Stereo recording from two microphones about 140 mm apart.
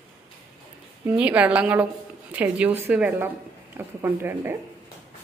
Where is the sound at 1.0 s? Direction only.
10° right (ahead or behind).